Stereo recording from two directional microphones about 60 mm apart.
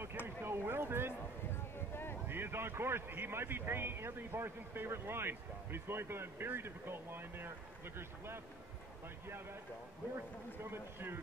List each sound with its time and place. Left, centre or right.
0.4 s a man's voice: right
2.2 s a man's voice: right
10.1 s a man's voice: right